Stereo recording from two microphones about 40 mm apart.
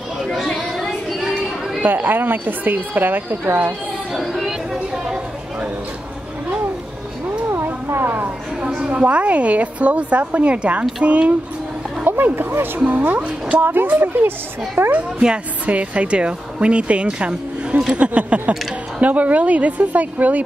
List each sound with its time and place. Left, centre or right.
0.2 s children playing: centre
0.6 s chatter: centre
1.8 s a woman's voice: right
4.1 s chatter: centre
7.6 s a sound: right
8.7 s a woman's voice: right
12.1 s speech: right
14.8 s speech: right
15.1 s a woman's voice: right